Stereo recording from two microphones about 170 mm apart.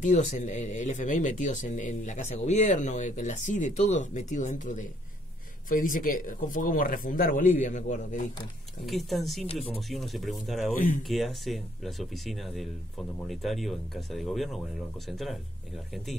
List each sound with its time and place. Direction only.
0.0 s speech: 45° left (ahead or behind)
8.8 s speech: centre (ahead or behind)
9.5 s speech: 35° left (ahead or behind)
9.8 s speech: centre (ahead or behind)